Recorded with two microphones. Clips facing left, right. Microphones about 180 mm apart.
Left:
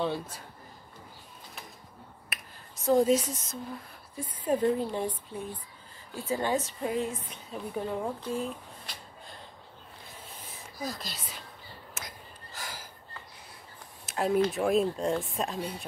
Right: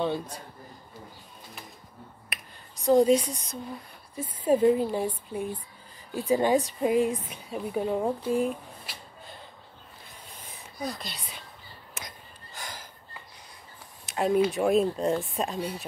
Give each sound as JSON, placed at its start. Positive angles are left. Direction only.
{"t": 0.0, "sound": "speech", "side_deg": 0}
{"t": 2.3, "sound": "finger snapping", "side_deg": 0}
{"t": 2.8, "sound": "speech", "side_deg": 0}
{"t": 4.1, "sound": "a woman's voice", "side_deg": -10}
{"t": 10.8, "sound": "speech", "side_deg": 0}
{"t": 12.5, "sound": "a sound", "side_deg": 5}
{"t": 14.0, "sound": "speech", "side_deg": 0}